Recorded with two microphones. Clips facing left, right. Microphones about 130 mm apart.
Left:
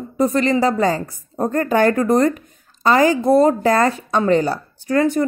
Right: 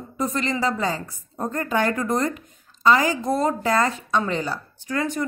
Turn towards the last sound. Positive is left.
turn(degrees=40)  # may be behind; listen again after turning